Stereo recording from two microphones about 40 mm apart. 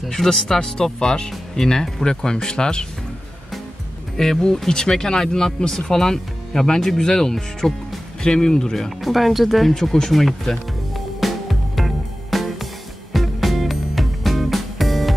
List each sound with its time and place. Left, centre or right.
0.1 s speech: centre
4.2 s speech: centre
11.1 s music: centre